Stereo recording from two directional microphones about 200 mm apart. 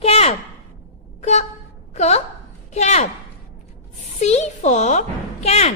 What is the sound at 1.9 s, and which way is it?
A woman's voice, 35° left (ahead or behind).